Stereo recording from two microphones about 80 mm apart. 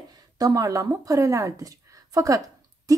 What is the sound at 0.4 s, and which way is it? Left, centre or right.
A woman's voice, right.